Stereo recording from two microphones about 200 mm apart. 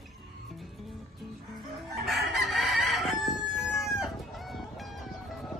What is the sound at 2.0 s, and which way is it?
Crowing, centre (ahead or behind).